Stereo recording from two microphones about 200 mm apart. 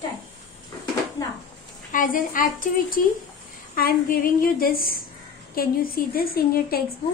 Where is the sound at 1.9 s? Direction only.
45° left (ahead or behind).